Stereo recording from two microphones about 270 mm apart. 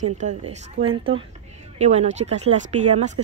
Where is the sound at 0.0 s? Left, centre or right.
Right.